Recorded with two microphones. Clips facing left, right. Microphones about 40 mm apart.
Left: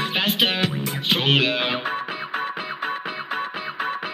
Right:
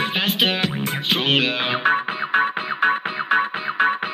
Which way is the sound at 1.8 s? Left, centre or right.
Right.